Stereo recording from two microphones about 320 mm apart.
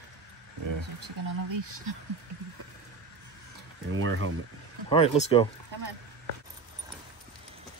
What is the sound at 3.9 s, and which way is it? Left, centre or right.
Speech, right.